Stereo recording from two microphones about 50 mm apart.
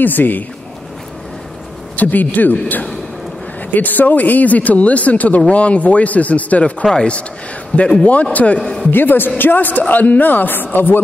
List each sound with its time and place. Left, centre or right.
0.0 s speech: left
2.0 s speech: left
3.7 s speech: left
8.9 s a man's voice: left